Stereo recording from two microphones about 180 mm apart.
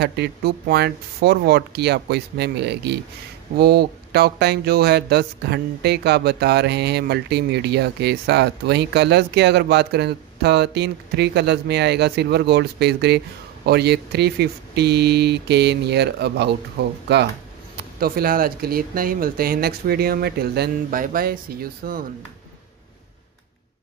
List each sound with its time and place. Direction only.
0.0 s speech: 65° right (ahead or behind)
17.9 s speech: 55° right (ahead or behind)